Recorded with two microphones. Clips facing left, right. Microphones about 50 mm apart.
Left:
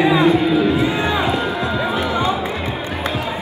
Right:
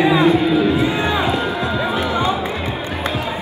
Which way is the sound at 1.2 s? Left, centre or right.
Left.